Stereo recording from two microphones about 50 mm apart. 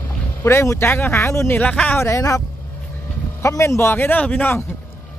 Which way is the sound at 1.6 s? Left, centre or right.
Left.